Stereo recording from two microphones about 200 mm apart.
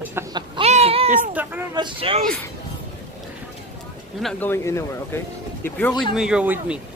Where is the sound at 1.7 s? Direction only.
20° right (ahead or behind).